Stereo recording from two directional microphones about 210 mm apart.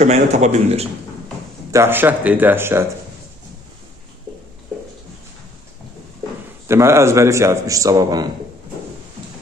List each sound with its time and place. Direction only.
0.0 s speech: 30° right (ahead or behind)
1.7 s a man's voice: 10° right (ahead or behind)
6.7 s a man's voice: 15° right (ahead or behind)